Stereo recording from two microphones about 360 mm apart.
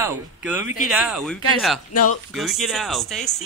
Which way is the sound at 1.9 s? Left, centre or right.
Left.